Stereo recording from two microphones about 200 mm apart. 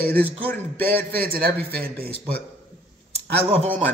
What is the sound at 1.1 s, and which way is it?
Speech, 50° right (ahead or behind).